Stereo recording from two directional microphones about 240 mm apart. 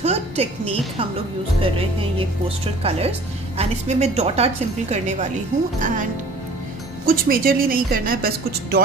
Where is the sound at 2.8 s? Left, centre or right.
Right.